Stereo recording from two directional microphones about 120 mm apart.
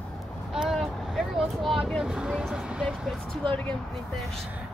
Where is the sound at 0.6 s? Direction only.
Centre (ahead or behind).